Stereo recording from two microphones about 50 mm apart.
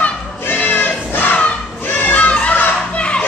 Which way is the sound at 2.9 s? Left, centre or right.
Left.